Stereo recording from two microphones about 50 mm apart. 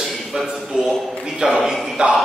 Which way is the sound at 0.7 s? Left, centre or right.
Centre.